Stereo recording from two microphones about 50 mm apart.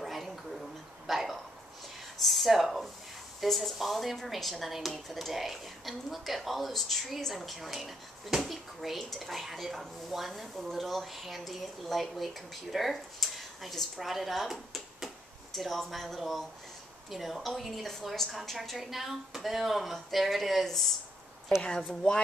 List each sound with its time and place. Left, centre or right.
0.0 s a sound: centre
1.0 s speech: centre
21.5 s a woman's voice: centre